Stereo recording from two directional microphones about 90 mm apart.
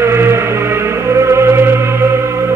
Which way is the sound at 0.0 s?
30° right (ahead or behind).